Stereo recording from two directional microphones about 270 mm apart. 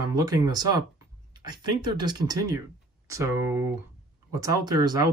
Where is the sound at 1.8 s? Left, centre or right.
Centre.